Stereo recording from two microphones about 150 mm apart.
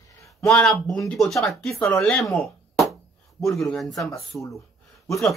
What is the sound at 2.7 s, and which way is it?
Chop, centre (ahead or behind).